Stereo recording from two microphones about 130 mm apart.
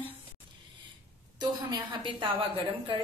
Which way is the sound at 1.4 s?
35° right (ahead or behind).